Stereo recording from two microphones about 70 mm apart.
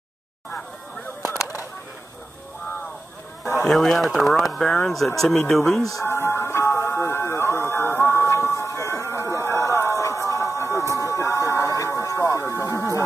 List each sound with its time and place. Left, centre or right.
3.6 s speech: centre
6.0 s music: left
8.3 s a sound: left
11.0 s music: left